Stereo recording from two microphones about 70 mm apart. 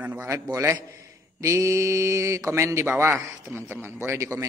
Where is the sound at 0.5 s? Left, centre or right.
Right.